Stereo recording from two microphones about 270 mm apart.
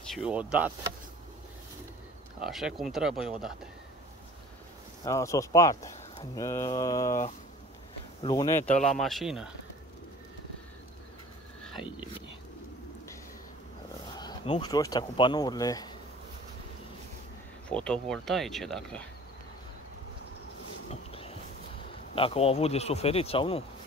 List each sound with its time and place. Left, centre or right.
0.1 s speech: centre
2.4 s speech: centre
5.0 s speech: centre
8.2 s speech: centre
11.8 s speech: centre
14.1 s speech: centre
17.6 s speech: centre
20.9 s a sound: left
22.1 s speech: left